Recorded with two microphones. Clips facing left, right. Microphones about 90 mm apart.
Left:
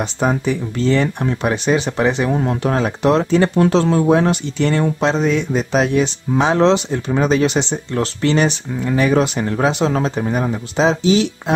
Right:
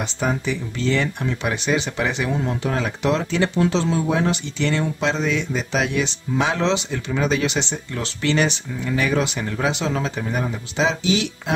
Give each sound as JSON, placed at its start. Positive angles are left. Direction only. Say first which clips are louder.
{"t": 0.0, "sound": "speech", "louder": "left 5 dB", "side_deg": 45}